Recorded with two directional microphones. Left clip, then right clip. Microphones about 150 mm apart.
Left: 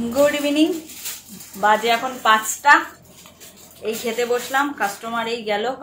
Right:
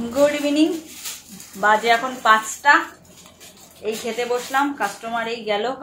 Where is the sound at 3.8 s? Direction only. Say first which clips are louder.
Left 2 dB; centre (ahead or behind).